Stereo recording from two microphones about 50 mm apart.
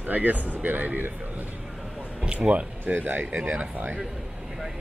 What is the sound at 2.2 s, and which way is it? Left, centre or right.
Speech, right.